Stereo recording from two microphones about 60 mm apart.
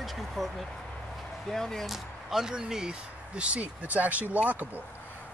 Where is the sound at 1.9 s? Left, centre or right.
Centre.